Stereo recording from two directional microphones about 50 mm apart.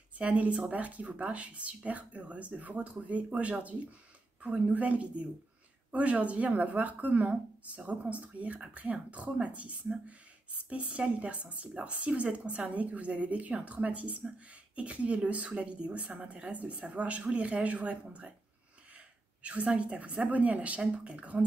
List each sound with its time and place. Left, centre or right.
0.2 s a woman's voice: right